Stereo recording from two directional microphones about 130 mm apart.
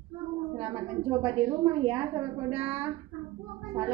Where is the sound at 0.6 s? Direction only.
35° right (ahead or behind).